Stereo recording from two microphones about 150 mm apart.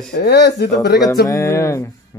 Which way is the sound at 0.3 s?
90° left.